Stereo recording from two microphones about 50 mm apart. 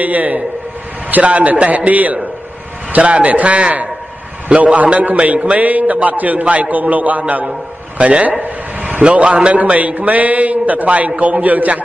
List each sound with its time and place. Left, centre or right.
0.0 s a man's voice: right